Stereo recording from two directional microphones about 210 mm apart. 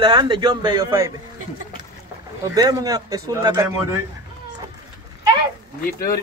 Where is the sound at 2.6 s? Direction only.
15° right (ahead or behind).